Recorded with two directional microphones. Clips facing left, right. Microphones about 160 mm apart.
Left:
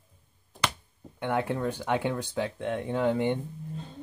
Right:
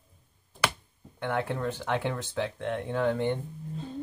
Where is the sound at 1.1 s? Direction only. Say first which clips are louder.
Left 2 dB; 10° left (ahead or behind).